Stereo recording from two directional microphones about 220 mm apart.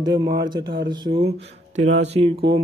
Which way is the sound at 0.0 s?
20° right (ahead or behind).